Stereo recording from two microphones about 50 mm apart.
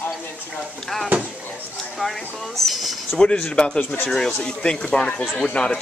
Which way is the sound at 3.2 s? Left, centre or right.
Centre.